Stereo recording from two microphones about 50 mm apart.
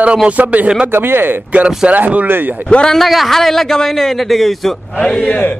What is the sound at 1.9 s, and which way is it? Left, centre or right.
Speech, right.